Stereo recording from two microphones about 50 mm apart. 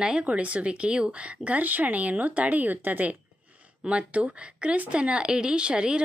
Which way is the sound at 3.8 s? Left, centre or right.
Right.